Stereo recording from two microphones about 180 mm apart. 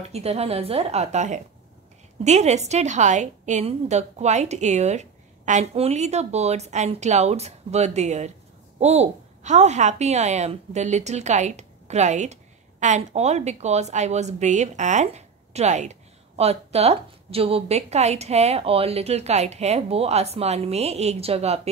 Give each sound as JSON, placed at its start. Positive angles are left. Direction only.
{"t": 0.1, "sound": "a woman's voice", "side_deg": -35}